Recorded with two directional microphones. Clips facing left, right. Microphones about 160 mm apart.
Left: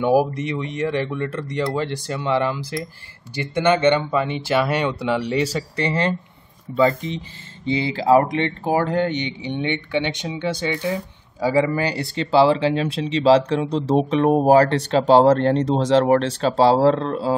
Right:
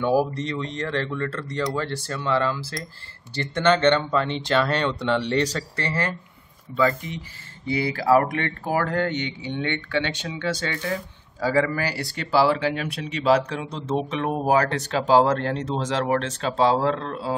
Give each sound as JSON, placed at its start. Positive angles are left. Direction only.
{"t": 0.0, "sound": "speech", "side_deg": 15}